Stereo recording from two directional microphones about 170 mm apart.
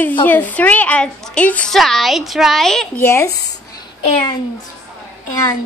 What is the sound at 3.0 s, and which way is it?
Speech, 15° left (ahead or behind).